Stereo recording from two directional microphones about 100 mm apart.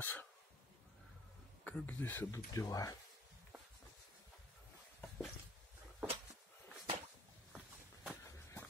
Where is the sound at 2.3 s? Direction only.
35° left (ahead or behind).